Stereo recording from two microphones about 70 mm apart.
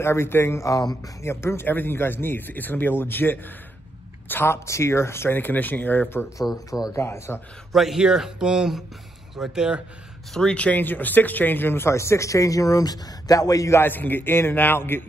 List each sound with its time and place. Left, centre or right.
0.0 s speech: left
0.7 s speech: left
1.2 s speech: left
4.6 s speech: left
6.4 s a man's voice: centre
7.0 s speech: left
7.7 s a man's voice: centre
10.3 s speech: centre; by 13.7 s left
13.7 s speech: left